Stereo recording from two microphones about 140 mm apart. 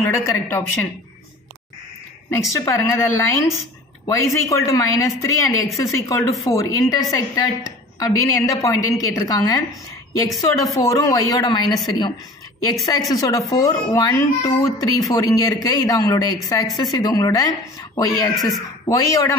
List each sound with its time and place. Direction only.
0.0 s a woman's voice: 20° left (ahead or behind)
2.3 s a woman's voice: 20° left (ahead or behind)